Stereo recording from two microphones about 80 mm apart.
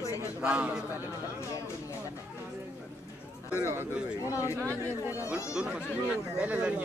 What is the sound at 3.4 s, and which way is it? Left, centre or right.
A man's voice, left.